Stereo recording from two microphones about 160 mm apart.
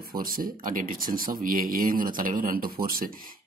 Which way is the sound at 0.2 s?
60° right (ahead or behind).